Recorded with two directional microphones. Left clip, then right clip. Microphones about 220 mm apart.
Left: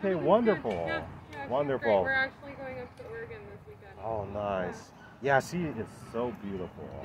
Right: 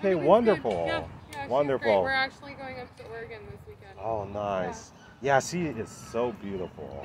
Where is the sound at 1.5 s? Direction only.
10° right (ahead or behind).